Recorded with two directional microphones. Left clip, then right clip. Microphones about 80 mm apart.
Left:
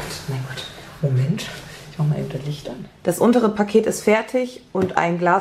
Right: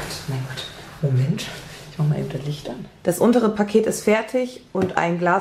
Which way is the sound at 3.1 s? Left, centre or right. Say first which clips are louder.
Left 1 dB; left.